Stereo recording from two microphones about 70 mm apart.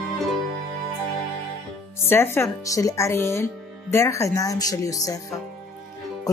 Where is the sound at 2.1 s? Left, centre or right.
Left.